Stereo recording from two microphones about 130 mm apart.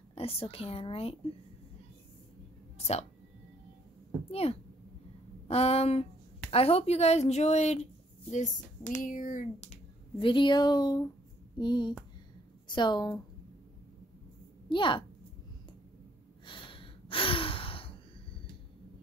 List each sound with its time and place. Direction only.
0.1 s speech: 45° left (ahead or behind)
4.3 s a woman's voice: 50° left (ahead or behind); by 9.7 s 75° left (ahead or behind)
10.1 s speech: 40° left (ahead or behind)
11.5 s a sound: 35° left (ahead or behind)
12.6 s speech: 35° left (ahead or behind)
14.7 s speech: 40° left (ahead or behind)
16.4 s gasp: 40° left (ahead or behind)